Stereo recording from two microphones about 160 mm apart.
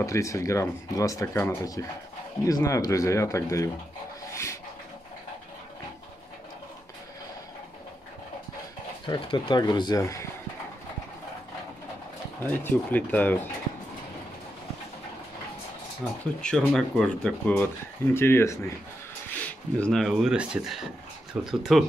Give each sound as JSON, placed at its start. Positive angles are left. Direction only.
{"t": 0.0, "sound": "speech", "side_deg": 20}
{"t": 4.3, "sound": "a sound", "side_deg": 20}
{"t": 9.0, "sound": "speech", "side_deg": 30}
{"t": 12.4, "sound": "speech", "side_deg": 10}
{"t": 16.3, "sound": "speech", "side_deg": 5}